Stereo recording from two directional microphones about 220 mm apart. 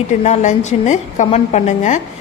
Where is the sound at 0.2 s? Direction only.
35° left (ahead or behind).